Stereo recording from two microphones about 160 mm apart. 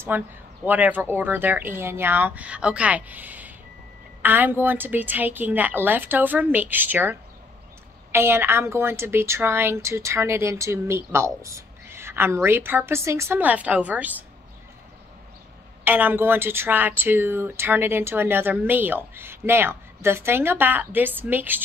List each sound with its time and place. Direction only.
0.1 s speech: 15° right (ahead or behind)
15.8 s speech: 10° right (ahead or behind)